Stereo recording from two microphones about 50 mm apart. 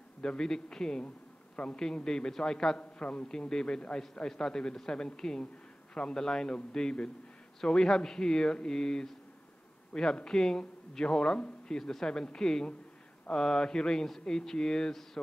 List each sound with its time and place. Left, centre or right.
0.2 s a man's voice: centre